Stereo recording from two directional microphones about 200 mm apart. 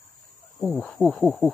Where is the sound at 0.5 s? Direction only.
5° left (ahead or behind).